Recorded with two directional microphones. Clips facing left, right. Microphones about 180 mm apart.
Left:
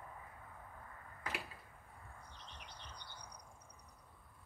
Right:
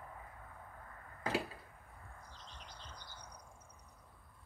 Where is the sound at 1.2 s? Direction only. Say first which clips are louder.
Right 9 dB; 35° right (ahead or behind).